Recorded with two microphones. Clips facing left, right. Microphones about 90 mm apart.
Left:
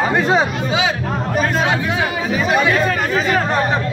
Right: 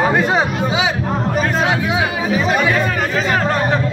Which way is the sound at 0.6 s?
10° right (ahead or behind).